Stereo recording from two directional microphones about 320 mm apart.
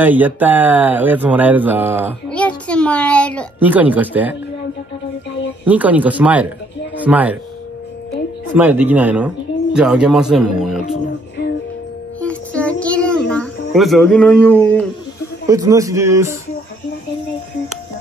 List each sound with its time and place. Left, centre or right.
0.0 s speech: centre
5.7 s speech: centre
8.5 s speech: centre
12.2 s music: centre
15.4 s a man's voice: centre